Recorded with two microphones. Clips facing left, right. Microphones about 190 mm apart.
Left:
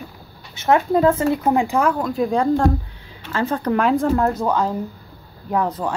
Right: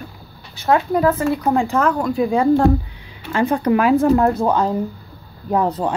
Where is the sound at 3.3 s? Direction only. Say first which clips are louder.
Right 4 dB; 15° right (ahead or behind).